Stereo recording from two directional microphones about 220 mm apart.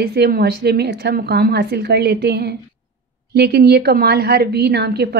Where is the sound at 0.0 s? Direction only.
45° right (ahead or behind).